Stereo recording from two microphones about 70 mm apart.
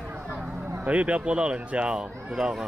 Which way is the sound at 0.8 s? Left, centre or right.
Centre.